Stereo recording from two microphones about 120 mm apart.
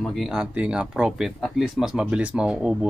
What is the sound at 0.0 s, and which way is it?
Speech, centre (ahead or behind).